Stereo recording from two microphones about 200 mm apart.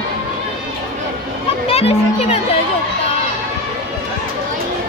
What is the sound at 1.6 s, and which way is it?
Music, 30° left (ahead or behind).